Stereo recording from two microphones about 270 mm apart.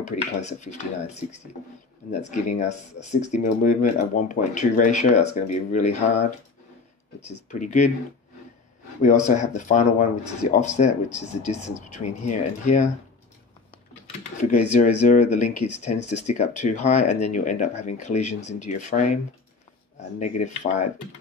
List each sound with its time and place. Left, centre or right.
0.0 s speech: left
7.2 s speech: left
9.3 s speech: left
14.4 s speech: left
20.2 s speech: left